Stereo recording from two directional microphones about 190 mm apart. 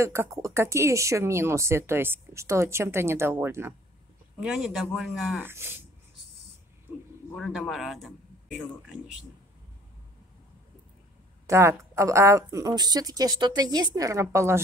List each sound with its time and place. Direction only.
0.0 s a man's voice: 15° right (ahead or behind)
5.4 s speech: 10° right (ahead or behind)
7.3 s a man's voice: centre (ahead or behind)
11.4 s speech: 15° right (ahead or behind)